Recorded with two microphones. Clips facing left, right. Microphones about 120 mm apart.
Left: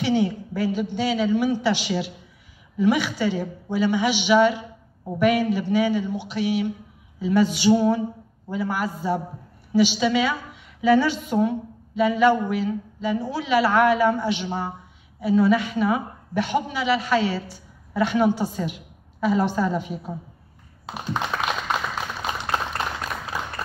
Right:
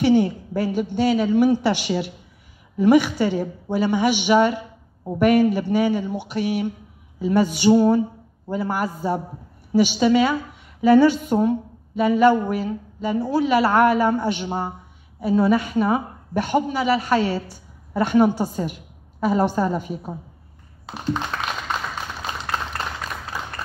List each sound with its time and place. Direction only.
0.0 s a woman's voice: 50° right (ahead or behind)
20.8 s computer keyboard: 5° left (ahead or behind)